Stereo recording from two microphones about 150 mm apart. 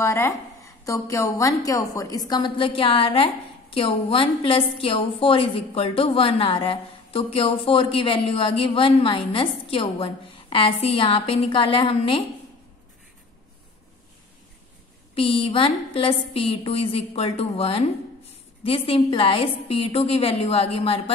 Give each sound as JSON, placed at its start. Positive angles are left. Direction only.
{"t": 0.0, "sound": "a woman's voice", "side_deg": 20}
{"t": 15.1, "sound": "a woman's voice", "side_deg": 35}